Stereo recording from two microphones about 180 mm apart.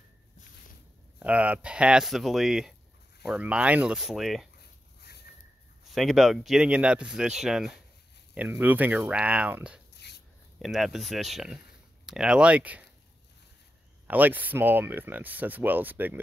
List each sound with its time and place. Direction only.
1.2 s speech: 10° right (ahead or behind)
4.6 s a sound: 65° left (ahead or behind)
5.9 s speech: centre (ahead or behind)
9.9 s a sound: 65° left (ahead or behind)
10.6 s speech: centre (ahead or behind)
14.0 s speech: 10° right (ahead or behind)